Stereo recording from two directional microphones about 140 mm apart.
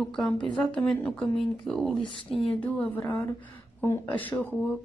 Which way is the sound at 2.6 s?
10° left (ahead or behind).